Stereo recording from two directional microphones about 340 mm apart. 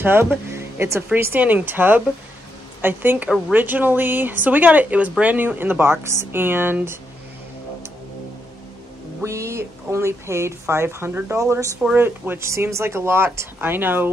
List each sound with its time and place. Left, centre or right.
0.0 s a woman's voice: centre
9.2 s speech: centre